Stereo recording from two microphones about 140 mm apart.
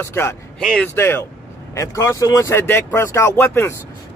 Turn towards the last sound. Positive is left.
turn(degrees=20)  # may be behind; listen again after turning